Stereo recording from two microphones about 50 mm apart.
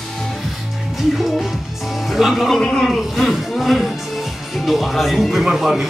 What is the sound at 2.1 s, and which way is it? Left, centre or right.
A man's voice, centre.